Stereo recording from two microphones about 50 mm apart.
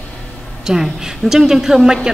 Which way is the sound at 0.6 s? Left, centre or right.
Centre.